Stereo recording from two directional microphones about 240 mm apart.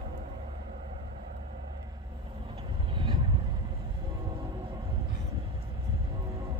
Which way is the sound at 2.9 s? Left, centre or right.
Right.